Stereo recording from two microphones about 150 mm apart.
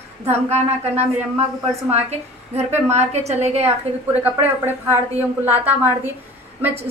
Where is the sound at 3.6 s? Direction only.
10° right (ahead or behind).